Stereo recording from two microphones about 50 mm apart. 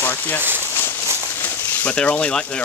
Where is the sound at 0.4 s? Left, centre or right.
Right.